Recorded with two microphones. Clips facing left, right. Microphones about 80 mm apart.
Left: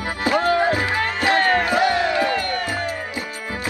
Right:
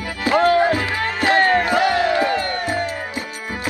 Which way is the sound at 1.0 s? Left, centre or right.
Right.